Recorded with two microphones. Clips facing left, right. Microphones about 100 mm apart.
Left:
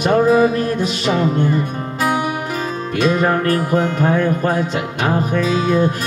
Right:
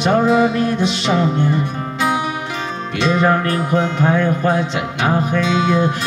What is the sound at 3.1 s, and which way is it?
Music, 45° left (ahead or behind).